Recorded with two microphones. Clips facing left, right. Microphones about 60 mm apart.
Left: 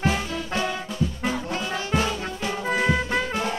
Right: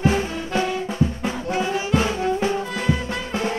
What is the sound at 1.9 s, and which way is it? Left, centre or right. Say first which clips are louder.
Music: right 5 dB; right.